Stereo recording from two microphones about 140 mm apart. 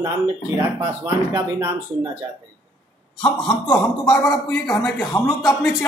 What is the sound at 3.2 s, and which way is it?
Speech, 5° left (ahead or behind).